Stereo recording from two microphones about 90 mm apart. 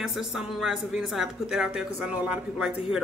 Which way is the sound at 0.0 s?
5° right (ahead or behind).